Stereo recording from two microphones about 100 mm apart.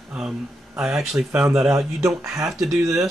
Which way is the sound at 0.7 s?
5° right (ahead or behind).